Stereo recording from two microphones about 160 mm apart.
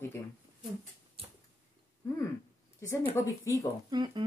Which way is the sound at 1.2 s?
35° right (ahead or behind).